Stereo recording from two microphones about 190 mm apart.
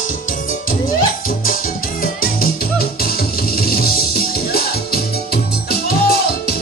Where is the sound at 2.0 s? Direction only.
50° left (ahead or behind).